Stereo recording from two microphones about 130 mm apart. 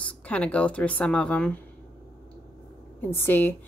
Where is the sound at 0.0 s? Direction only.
10° left (ahead or behind).